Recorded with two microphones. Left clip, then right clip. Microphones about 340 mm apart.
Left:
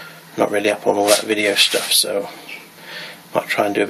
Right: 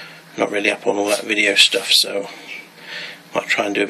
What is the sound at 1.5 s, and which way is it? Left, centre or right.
Speech, centre.